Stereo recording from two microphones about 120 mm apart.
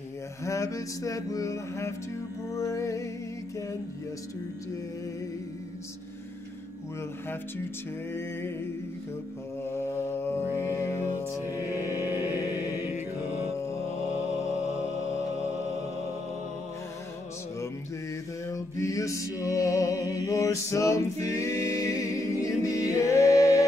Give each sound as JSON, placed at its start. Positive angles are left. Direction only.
{"t": 0.5, "sound": "mantra", "side_deg": 25}
{"t": 8.1, "sound": "mantra", "side_deg": 20}
{"t": 9.7, "sound": "mantra", "side_deg": 20}
{"t": 18.5, "sound": "music", "side_deg": 25}